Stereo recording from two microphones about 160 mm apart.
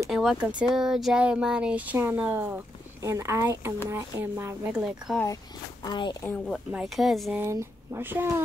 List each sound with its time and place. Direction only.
0.1 s speech: centre (ahead or behind)
4.7 s speech: 5° right (ahead or behind)
5.9 s a woman's voice: 30° left (ahead or behind)
6.2 s speech: 5° left (ahead or behind)
7.3 s speech: 15° right (ahead or behind)